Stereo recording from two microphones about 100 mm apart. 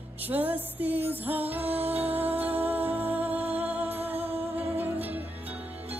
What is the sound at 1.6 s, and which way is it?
Music, 90° right.